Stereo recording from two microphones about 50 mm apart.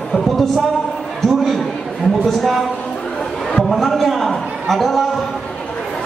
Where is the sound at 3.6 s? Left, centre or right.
Centre.